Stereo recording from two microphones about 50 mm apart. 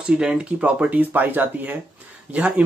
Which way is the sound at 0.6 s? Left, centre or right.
Right.